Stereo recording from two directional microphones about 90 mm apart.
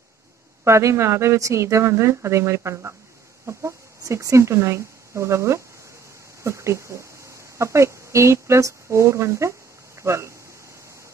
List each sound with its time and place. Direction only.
0.7 s a woman's voice: 30° right (ahead or behind)